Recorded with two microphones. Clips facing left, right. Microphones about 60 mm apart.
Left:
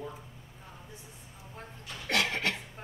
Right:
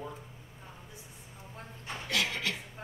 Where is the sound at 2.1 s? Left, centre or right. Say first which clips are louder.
Left 3 dB; left.